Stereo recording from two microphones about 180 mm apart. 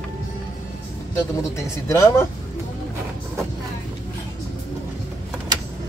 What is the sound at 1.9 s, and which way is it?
Speech, 20° left (ahead or behind).